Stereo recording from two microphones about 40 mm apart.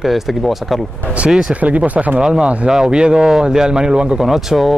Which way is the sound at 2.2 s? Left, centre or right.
Centre.